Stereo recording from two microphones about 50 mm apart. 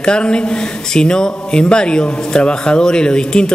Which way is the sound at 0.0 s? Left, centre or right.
Centre.